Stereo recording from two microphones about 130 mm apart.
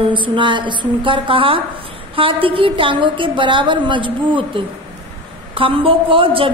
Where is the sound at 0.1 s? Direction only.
40° right (ahead or behind).